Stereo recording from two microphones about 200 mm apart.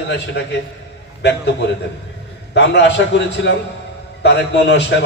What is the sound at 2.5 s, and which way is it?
A man's voice, 60° left (ahead or behind).